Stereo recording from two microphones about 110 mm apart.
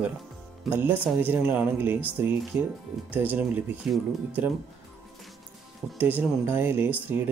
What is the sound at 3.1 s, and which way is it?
Speech, 15° right (ahead or behind).